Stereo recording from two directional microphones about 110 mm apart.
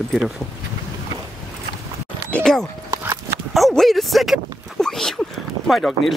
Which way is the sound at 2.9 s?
20° right (ahead or behind).